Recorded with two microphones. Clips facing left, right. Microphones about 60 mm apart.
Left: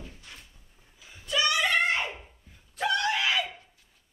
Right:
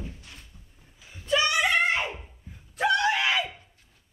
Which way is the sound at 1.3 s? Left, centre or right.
Right.